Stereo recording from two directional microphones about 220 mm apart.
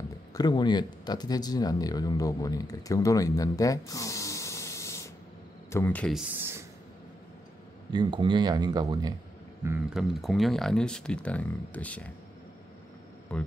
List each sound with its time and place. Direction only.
0.3 s speech: 20° left (ahead or behind); by 6.6 s 10° right (ahead or behind)
7.9 s speech: 20° right (ahead or behind)
9.7 s speech: 5° right (ahead or behind)
13.3 s speech: 5° left (ahead or behind)